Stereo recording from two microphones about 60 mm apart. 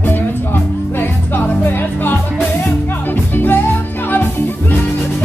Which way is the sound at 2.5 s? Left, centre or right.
Left.